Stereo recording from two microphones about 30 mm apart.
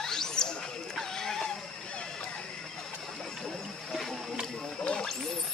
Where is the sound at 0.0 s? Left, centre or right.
Centre.